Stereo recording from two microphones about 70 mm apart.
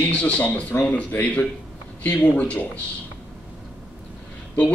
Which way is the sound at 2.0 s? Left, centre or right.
Centre.